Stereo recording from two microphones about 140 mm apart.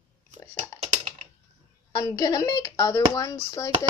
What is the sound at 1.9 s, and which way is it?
Speech, 25° left (ahead or behind).